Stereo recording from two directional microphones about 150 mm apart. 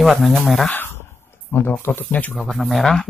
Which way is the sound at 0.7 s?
15° left (ahead or behind).